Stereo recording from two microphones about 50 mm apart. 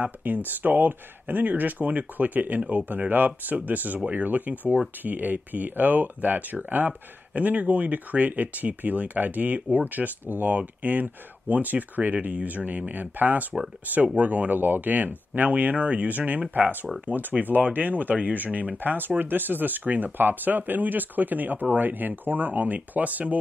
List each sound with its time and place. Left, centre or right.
0.0 s speech: right